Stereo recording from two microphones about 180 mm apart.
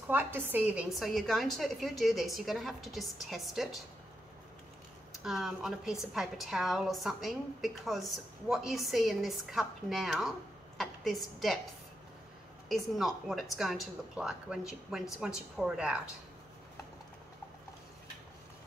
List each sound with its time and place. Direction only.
0.1 s a woman's voice: 10° right (ahead or behind)
5.2 s a woman's voice: centre (ahead or behind)
10.8 s a sound: centre (ahead or behind)
12.6 s a woman's voice: centre (ahead or behind)